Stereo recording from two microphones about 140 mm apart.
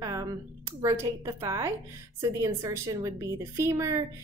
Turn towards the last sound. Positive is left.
turn(degrees=-20)  # may be behind; listen again after turning